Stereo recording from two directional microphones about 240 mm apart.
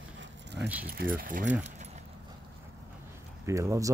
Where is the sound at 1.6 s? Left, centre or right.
Right.